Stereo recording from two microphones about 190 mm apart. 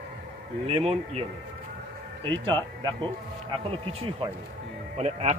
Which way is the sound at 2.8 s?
25° right (ahead or behind).